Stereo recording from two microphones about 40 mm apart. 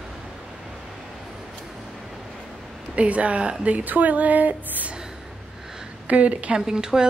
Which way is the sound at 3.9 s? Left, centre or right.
Right.